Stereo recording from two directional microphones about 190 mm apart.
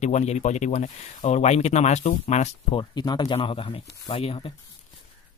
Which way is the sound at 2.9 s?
20° left (ahead or behind).